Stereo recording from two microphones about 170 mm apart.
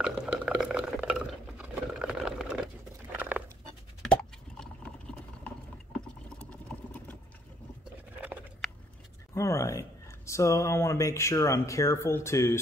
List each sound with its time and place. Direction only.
0.0 s stir: 5° right (ahead or behind)
1.6 s sewing machine: 5° right (ahead or behind)
3.2 s dog: 10° right (ahead or behind)
4.0 s plop: 5° left (ahead or behind)
5.9 s a sound: 5° left (ahead or behind)
9.3 s speech: 15° left (ahead or behind)